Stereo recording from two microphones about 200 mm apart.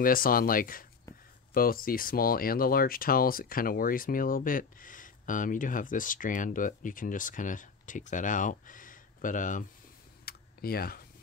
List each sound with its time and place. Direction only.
0.0 s speech: 45° left (ahead or behind)
10.2 s computer keyboard: 50° left (ahead or behind)